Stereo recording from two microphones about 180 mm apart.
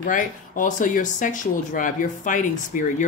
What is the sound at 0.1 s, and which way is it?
Speech, 45° left (ahead or behind).